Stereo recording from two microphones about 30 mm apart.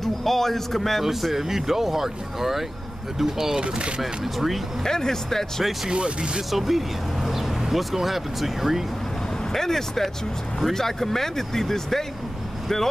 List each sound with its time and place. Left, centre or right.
0.0 s a man's voice: centre
1.3 s speech: centre
3.6 s speech: right
4.0 s speech: centre
4.8 s speech: centre
5.9 s speech: right
6.5 s speech: centre
9.5 s speech: centre